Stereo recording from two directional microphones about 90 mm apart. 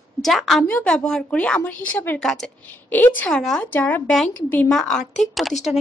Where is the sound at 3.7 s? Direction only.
20° left (ahead or behind).